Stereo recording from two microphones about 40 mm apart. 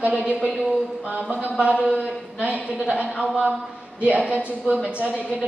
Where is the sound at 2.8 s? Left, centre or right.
Right.